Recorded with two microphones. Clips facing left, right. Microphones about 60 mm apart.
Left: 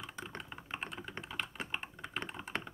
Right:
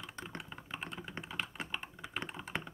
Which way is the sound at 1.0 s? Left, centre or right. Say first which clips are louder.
Even; centre.